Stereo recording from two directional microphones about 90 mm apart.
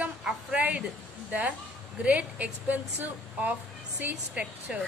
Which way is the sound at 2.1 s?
15° right (ahead or behind).